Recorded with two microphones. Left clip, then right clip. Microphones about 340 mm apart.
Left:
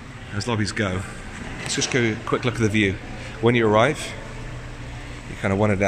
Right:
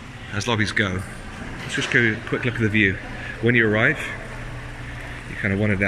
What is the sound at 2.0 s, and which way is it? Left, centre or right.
Speech, centre.